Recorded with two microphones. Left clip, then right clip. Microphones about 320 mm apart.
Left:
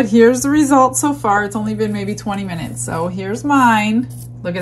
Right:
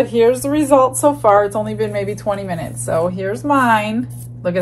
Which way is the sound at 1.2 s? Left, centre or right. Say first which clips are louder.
Right 3 dB; centre.